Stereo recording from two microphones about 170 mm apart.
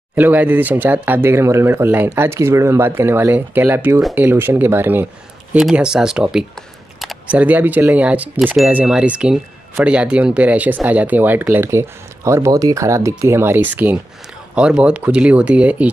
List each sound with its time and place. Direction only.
0.1 s speech: 10° right (ahead or behind)